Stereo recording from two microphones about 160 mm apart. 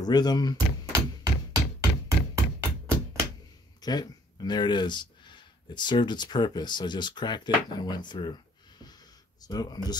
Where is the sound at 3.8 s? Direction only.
25° left (ahead or behind).